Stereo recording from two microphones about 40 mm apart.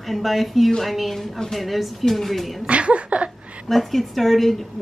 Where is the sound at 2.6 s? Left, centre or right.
Right.